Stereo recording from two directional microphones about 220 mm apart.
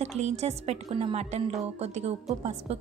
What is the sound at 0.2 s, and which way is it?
Speech, 30° right (ahead or behind).